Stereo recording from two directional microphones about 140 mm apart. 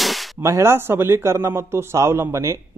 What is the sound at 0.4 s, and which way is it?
A man's voice, 20° right (ahead or behind).